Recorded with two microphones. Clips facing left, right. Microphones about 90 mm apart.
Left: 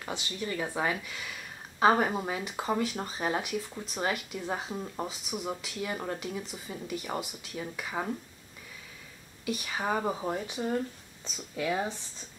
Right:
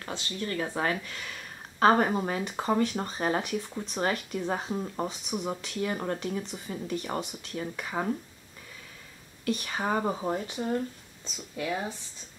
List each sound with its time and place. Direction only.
0.0 s speech: 10° left (ahead or behind)
9.4 s speech: 5° left (ahead or behind)
10.4 s speech: 15° left (ahead or behind)